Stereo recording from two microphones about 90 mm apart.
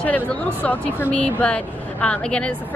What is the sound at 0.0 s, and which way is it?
Speech, 15° left (ahead or behind).